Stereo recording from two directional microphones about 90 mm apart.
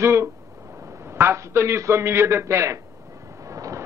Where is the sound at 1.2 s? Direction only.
30° right (ahead or behind).